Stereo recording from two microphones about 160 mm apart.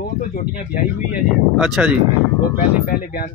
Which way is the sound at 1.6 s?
5° right (ahead or behind).